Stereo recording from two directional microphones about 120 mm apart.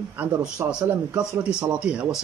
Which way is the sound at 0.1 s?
15° right (ahead or behind).